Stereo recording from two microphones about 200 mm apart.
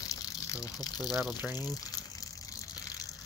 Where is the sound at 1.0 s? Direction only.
Centre (ahead or behind).